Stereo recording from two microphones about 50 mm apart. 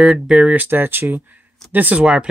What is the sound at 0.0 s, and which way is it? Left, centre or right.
Speech, centre.